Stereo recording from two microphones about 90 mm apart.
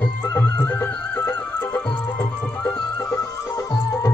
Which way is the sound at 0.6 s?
25° left (ahead or behind).